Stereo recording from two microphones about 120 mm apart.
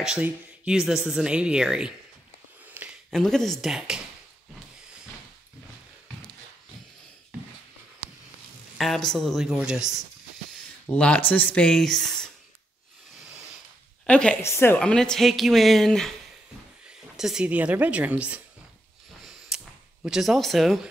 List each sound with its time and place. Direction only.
0.0 s speech: 5° right (ahead or behind)
3.1 s speech: 5° left (ahead or behind)
8.7 s speech: centre (ahead or behind)
10.9 s speech: 10° left (ahead or behind)
14.0 s a woman's voice: 10° left (ahead or behind)
14.8 s speech: 5° left (ahead or behind)
17.2 s speech: 5° right (ahead or behind)
19.2 s a sound: 5° right (ahead or behind)